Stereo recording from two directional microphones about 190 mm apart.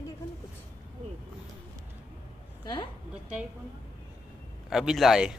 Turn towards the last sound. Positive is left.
turn(degrees=-5)  # may be behind; listen again after turning